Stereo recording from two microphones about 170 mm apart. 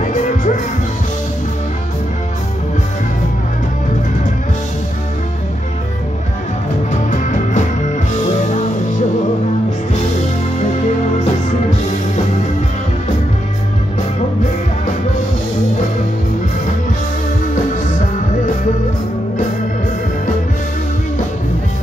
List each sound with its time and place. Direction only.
0.0 s music: 50° left (ahead or behind)
6.9 s music: 45° left (ahead or behind)